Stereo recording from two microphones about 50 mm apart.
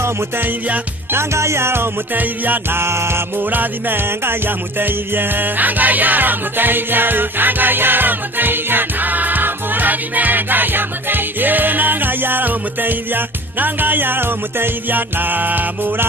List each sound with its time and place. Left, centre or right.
1.1 s music: right
2.1 s music: right
2.8 s music: right
3.5 s music: right